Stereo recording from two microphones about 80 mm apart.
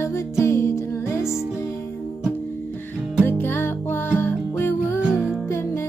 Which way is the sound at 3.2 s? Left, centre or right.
Left.